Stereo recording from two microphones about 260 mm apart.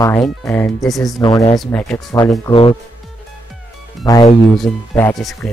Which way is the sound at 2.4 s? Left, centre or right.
Left.